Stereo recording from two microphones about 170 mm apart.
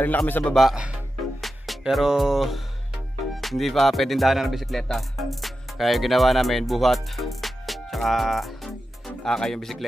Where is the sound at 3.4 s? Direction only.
Centre (ahead or behind).